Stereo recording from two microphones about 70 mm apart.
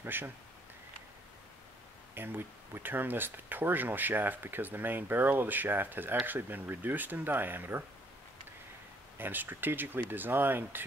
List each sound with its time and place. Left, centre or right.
0.0 s speech: right
2.1 s speech: right
9.2 s speech: right